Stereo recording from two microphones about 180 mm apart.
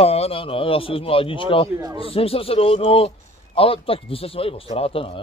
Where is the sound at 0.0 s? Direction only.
35° left (ahead or behind).